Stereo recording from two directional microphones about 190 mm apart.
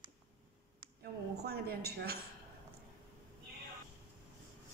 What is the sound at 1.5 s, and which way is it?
Speech, 55° right (ahead or behind).